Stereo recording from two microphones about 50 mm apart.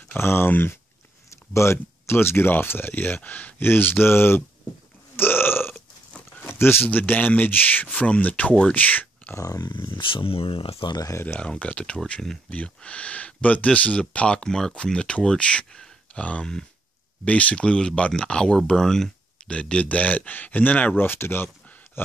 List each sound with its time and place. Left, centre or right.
0.2 s speech: left
1.5 s speech: left
2.9 s speech: left
3.6 s speech: left
5.1 s burping: left
6.4 s a sound: left
6.9 s speech: left
11.3 s speech: left
19.5 s speech: left
20.9 s speech: left
22.0 s a sound: left